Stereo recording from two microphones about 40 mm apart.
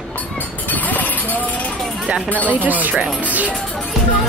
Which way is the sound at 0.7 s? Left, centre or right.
Left.